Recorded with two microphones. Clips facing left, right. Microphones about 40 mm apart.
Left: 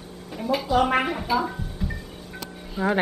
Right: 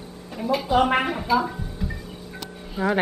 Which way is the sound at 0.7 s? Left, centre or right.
Centre.